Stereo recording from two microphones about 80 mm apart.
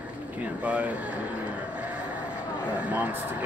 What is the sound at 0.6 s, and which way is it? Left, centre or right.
Speech, centre.